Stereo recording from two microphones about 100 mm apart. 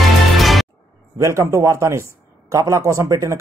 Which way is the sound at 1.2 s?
30° right (ahead or behind).